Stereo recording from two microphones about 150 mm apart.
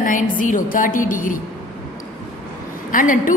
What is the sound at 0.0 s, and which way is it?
A woman's voice, 60° left (ahead or behind).